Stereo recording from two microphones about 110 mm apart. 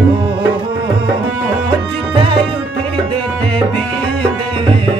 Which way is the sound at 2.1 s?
55° right (ahead or behind).